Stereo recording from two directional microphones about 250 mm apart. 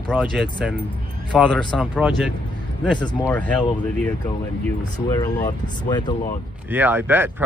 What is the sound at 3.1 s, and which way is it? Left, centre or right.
Speech, centre.